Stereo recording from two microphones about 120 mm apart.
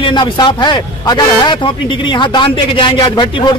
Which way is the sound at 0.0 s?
40° left (ahead or behind).